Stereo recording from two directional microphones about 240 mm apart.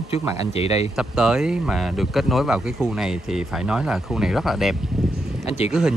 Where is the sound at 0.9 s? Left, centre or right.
Centre.